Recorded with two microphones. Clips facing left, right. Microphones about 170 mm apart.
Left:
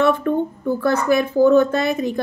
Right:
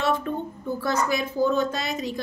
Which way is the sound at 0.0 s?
55° left (ahead or behind).